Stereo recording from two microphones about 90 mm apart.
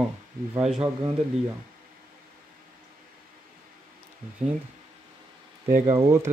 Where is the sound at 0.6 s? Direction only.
5° right (ahead or behind).